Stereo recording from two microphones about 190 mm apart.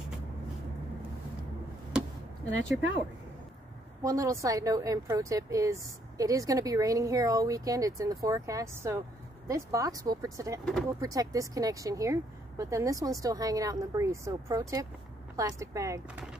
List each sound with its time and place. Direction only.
4.0 s a woman's voice: 15° right (ahead or behind)
10.6 s speech: centre (ahead or behind)
10.9 s a woman's voice: 15° right (ahead or behind)